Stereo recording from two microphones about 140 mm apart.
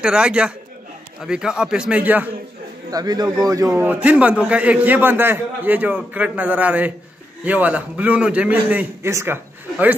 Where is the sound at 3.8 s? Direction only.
10° right (ahead or behind).